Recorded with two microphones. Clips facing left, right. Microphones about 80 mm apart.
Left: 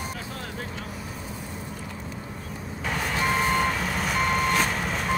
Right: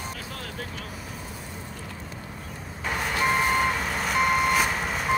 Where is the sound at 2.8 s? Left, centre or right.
Centre.